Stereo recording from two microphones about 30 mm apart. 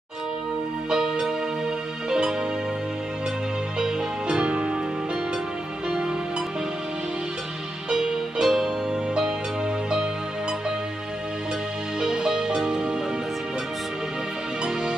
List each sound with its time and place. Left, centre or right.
0.8 s music: right
3.8 s music: right
4.5 s music: right
7.9 s music: right
12.0 s music: right